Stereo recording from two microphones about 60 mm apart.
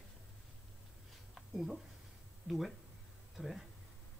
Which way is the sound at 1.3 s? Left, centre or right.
Centre.